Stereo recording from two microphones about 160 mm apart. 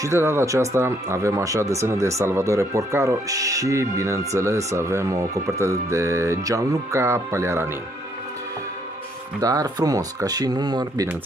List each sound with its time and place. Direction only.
0.0 s speech: 15° right (ahead or behind)
9.4 s speech: 20° right (ahead or behind)